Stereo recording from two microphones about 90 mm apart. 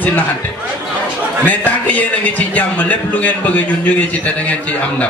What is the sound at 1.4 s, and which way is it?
A man's voice, 20° left (ahead or behind).